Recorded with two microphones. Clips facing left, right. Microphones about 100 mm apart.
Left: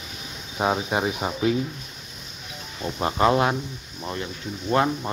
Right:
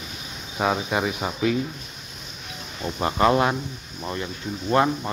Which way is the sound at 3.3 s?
5° left (ahead or behind).